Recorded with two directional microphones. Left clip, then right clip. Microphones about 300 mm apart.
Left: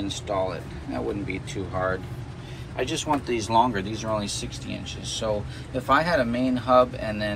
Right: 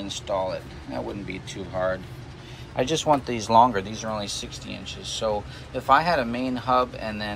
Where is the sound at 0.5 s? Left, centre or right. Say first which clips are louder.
Right 1 dB; centre.